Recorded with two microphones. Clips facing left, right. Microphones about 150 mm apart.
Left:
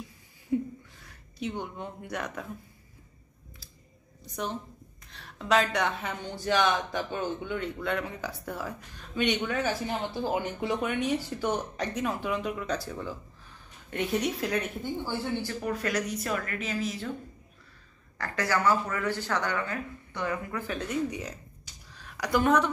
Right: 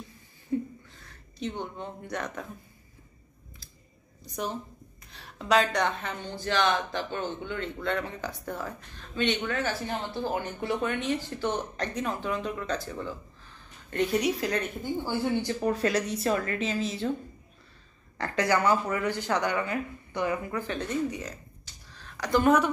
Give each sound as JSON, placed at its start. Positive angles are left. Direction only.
{"t": 0.5, "sound": "a sound", "side_deg": 10}
{"t": 5.1, "sound": "speech", "side_deg": -5}
{"t": 14.8, "sound": "speech", "side_deg": -15}
{"t": 15.6, "sound": "speech", "side_deg": -30}
{"t": 18.1, "sound": "speech", "side_deg": -20}
{"t": 20.5, "sound": "speech", "side_deg": 5}
{"t": 21.9, "sound": "a sound", "side_deg": 10}
{"t": 22.4, "sound": "speech", "side_deg": -5}